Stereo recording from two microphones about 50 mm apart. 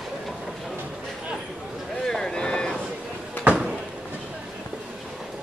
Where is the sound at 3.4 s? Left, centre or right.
Centre.